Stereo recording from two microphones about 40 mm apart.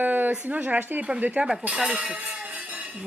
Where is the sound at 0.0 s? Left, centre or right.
Right.